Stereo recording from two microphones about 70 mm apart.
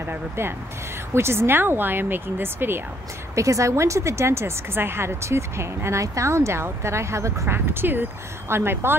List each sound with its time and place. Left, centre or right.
0.0 s speech: right
3.3 s speech: right